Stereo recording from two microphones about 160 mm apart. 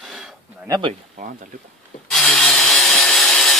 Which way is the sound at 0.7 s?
30° right (ahead or behind).